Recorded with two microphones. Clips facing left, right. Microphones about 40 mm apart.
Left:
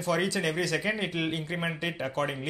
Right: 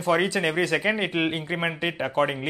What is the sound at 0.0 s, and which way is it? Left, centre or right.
Speech, right.